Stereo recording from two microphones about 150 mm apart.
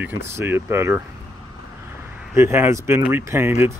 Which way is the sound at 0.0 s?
15° right (ahead or behind).